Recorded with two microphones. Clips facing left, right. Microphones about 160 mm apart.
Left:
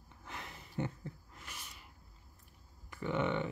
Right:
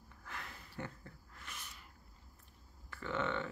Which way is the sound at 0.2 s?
20° left (ahead or behind).